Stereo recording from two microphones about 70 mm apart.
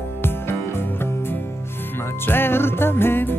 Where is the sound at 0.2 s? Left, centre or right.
Left.